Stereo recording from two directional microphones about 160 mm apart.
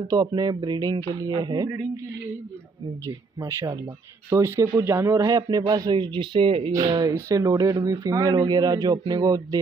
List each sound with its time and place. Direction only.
0.1 s a man's voice: 25° right (ahead or behind)
3.3 s a man's voice: 15° right (ahead or behind)